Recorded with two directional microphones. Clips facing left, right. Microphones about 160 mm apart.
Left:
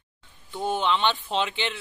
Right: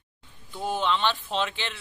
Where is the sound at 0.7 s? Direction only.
15° left (ahead or behind).